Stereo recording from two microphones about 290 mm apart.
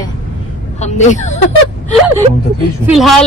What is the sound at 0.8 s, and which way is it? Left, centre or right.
Speech, left.